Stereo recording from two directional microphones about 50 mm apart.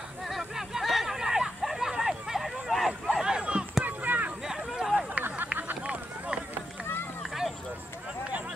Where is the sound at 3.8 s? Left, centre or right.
Right.